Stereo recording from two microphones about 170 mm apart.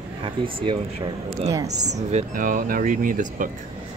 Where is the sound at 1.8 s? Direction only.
40° right (ahead or behind).